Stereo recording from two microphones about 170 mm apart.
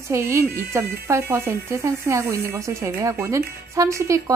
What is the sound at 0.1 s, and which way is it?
A woman's voice, 15° right (ahead or behind).